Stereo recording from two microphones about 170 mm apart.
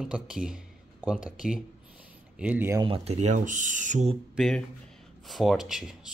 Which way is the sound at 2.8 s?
35° right (ahead or behind).